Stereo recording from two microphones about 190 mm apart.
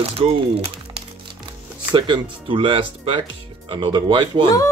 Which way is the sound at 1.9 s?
25° right (ahead or behind).